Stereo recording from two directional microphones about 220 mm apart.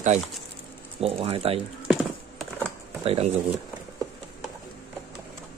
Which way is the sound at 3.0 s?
25° right (ahead or behind).